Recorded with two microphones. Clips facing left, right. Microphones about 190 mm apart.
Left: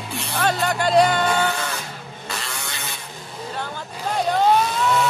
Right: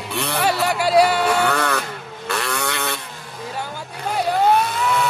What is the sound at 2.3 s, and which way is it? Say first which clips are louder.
Vehicle: right 9 dB; 65° right (ahead or behind).